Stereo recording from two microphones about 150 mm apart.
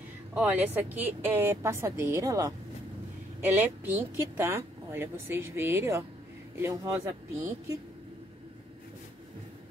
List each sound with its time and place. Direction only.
0.3 s a woman's voice: 10° right (ahead or behind)
3.5 s a woman's voice: 10° right (ahead or behind)